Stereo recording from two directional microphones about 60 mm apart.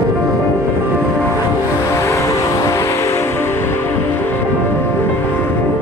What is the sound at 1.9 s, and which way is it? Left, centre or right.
Music, left.